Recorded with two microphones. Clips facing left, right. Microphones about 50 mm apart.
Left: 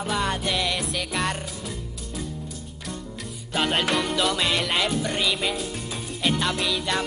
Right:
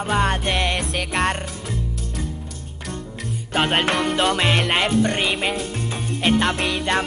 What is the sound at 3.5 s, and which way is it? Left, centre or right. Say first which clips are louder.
Music: right 3 dB; right.